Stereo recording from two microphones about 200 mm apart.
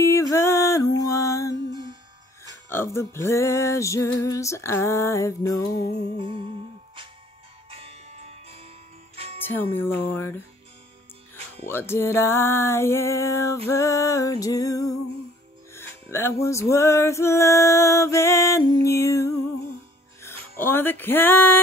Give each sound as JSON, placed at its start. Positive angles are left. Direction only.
{"t": 0.0, "sound": "music", "side_deg": 15}
{"t": 1.7, "sound": "music", "side_deg": -20}
{"t": 2.7, "sound": "music", "side_deg": 10}
{"t": 6.1, "sound": "music", "side_deg": -25}
{"t": 7.7, "sound": "music", "side_deg": -30}
{"t": 9.4, "sound": "music", "side_deg": 10}
{"t": 11.6, "sound": "music", "side_deg": 10}
{"t": 20.5, "sound": "music", "side_deg": 10}